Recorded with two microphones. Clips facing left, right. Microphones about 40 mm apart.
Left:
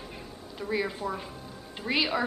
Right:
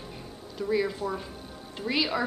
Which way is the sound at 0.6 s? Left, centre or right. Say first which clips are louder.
Right 3 dB; centre.